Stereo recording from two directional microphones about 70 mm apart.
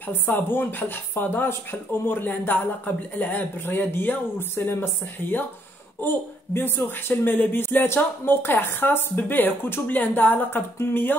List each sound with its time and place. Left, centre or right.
0.0 s a woman's voice: left